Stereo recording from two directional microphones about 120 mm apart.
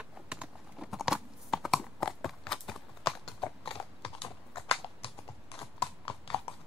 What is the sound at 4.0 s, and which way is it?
Computer keyboard, 50° left (ahead or behind).